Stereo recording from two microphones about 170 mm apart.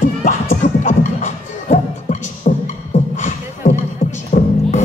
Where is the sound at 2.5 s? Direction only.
45° left (ahead or behind).